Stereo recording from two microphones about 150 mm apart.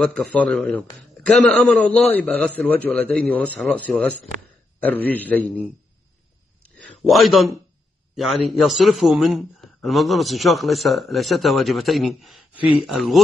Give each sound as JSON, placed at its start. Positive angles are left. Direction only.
{"t": 0.0, "sound": "a man's voice", "side_deg": 5}
{"t": 6.6, "sound": "a man's voice", "side_deg": 5}